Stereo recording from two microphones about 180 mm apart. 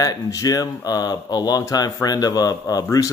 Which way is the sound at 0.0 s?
20° left (ahead or behind).